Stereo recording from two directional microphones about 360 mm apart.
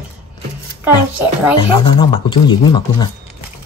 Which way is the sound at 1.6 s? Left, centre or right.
Centre.